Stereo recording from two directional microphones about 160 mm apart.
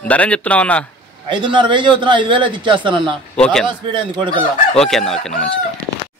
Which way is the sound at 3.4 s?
5° left (ahead or behind).